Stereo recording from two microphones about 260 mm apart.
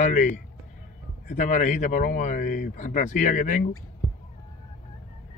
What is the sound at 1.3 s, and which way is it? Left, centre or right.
Speech, left.